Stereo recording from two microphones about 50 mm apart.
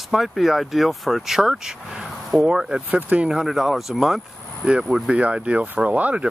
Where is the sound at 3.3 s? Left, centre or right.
Centre.